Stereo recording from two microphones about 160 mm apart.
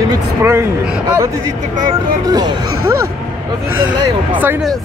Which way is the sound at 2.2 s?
25° right (ahead or behind).